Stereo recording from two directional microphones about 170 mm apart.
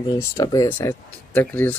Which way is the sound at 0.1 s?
20° left (ahead or behind).